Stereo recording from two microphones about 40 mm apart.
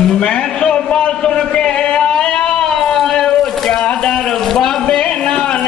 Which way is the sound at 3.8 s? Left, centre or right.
Left.